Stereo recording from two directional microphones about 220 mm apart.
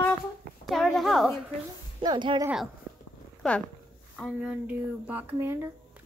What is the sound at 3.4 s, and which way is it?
A woman's voice, centre (ahead or behind).